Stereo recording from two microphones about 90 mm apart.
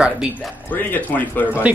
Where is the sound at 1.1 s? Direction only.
20° left (ahead or behind).